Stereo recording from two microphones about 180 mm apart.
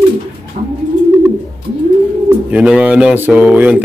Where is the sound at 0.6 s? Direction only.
40° right (ahead or behind).